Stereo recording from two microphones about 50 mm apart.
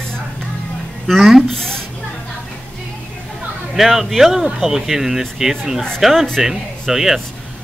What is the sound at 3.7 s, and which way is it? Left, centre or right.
Speech, centre.